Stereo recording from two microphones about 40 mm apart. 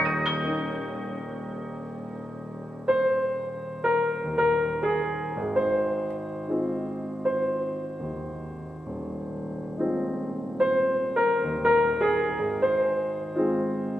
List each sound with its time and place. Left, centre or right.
0.0 s music: centre
2.9 s music: centre
4.1 s music: centre
9.8 s music: centre